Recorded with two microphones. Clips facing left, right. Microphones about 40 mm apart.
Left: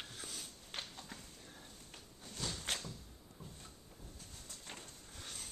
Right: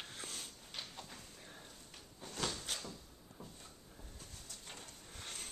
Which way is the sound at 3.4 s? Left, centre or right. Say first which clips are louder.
Right 1 dB; right.